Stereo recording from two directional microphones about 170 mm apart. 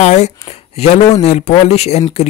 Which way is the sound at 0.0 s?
40° left (ahead or behind).